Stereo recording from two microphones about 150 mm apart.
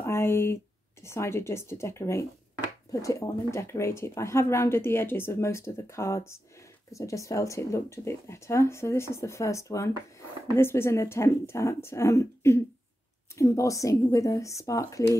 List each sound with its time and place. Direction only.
0.0 s speech: 15° left (ahead or behind)